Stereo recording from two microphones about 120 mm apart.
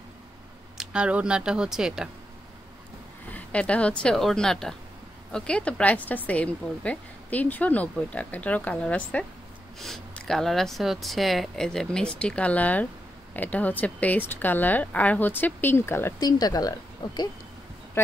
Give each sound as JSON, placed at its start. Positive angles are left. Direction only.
{"t": 0.7, "sound": "speech", "side_deg": -10}
{"t": 3.3, "sound": "a woman's voice", "side_deg": 10}
{"t": 16.2, "sound": "speech", "side_deg": 35}
{"t": 18.0, "sound": "speech", "side_deg": 20}